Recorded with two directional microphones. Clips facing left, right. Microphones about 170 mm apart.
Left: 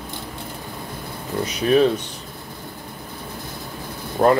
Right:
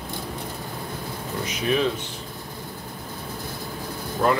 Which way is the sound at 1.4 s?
35° left (ahead or behind).